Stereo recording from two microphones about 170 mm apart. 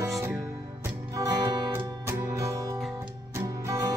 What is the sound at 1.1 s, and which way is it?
Music, 20° right (ahead or behind).